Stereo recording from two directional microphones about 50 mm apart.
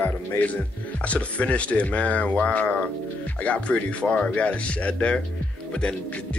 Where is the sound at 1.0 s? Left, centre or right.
Left.